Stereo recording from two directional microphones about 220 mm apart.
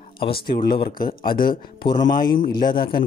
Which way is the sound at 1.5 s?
20° left (ahead or behind).